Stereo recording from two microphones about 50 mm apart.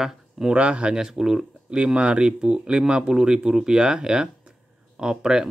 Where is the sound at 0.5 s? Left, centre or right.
Right.